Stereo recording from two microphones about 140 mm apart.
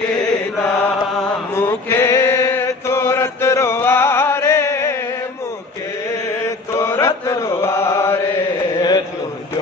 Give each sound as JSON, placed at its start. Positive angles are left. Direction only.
{"t": 1.5, "sound": "chant", "side_deg": 20}
{"t": 6.4, "sound": "chant", "side_deg": 20}
{"t": 8.7, "sound": "a sound", "side_deg": 30}